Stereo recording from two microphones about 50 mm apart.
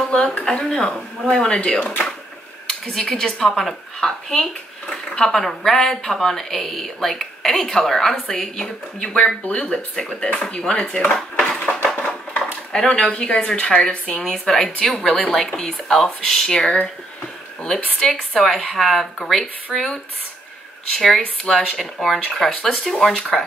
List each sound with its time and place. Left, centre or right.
0.1 s speech: left
0.5 s speech: centre
1.6 s speech: left
11.4 s a sound: left
11.9 s a sound: centre
12.7 s speech: centre
18.3 s speech: centre